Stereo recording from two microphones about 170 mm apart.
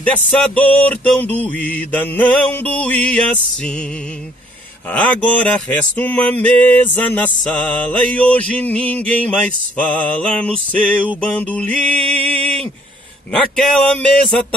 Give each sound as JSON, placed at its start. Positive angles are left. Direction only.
{"t": 0.0, "sound": "mantra", "side_deg": 10}
{"t": 4.8, "sound": "mantra", "side_deg": 10}
{"t": 13.3, "sound": "speech", "side_deg": 5}